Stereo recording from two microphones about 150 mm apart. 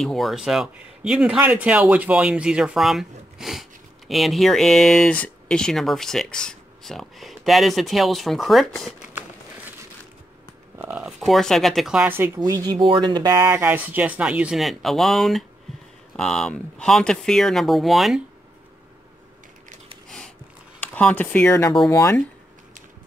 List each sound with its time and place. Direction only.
0.0 s speech: centre (ahead or behind)
10.8 s speech: 10° right (ahead or behind)
12.4 s speech: 25° right (ahead or behind)
13.4 s speech: 15° right (ahead or behind)
20.8 s speech: 10° left (ahead or behind)